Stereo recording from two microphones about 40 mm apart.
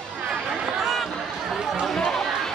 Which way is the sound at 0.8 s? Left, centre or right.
Centre.